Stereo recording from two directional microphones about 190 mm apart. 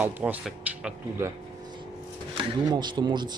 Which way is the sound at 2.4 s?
25° right (ahead or behind).